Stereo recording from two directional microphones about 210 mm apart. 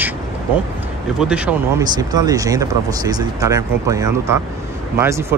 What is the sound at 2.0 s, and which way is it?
Speech, 15° right (ahead or behind).